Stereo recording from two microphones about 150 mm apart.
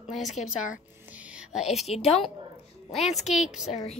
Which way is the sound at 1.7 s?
45° left (ahead or behind).